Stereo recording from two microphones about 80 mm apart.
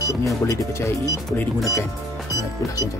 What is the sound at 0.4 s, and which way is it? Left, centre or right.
Speech, left.